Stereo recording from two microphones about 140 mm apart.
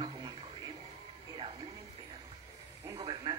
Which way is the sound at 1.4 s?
40° right (ahead or behind).